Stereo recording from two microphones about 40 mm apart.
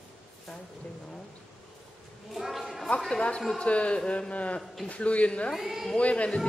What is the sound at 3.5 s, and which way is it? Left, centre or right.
A man's voice, left.